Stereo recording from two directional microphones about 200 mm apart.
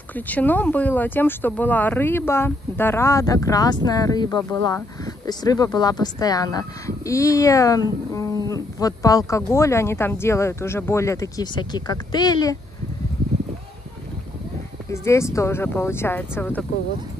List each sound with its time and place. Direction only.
0.1 s speech: 10° left (ahead or behind)
14.9 s speech: 15° left (ahead or behind)